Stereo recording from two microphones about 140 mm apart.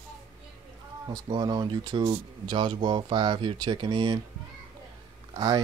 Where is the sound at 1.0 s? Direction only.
30° right (ahead or behind).